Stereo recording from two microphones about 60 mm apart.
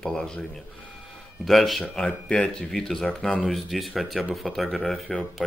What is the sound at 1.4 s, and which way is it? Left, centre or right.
Speech, centre.